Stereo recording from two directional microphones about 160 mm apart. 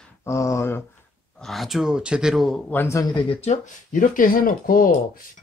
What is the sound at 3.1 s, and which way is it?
Speech, 35° left (ahead or behind).